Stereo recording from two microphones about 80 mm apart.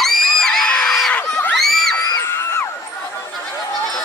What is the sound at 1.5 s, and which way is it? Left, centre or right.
Crowd, centre.